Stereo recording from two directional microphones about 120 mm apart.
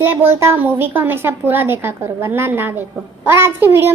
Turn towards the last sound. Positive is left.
turn(degrees=-20)  # may be behind; listen again after turning